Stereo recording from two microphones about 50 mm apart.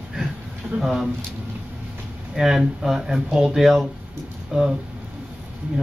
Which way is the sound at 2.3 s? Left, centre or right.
Centre.